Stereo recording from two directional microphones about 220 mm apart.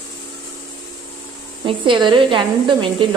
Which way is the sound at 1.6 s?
20° right (ahead or behind).